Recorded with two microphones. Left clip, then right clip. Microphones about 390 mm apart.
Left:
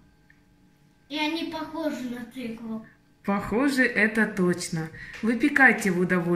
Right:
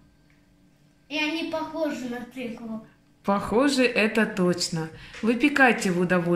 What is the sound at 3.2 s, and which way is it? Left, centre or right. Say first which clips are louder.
Speech: right 3 dB; centre.